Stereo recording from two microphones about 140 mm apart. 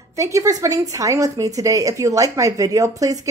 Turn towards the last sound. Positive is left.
turn(degrees=-25)  # may be behind; listen again after turning